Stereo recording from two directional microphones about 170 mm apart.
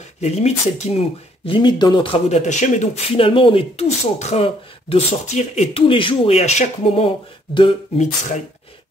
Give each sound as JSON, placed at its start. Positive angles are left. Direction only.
{"t": 0.2, "sound": "speech", "side_deg": 40}